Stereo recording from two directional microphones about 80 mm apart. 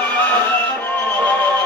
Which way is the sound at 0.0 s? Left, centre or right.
Left.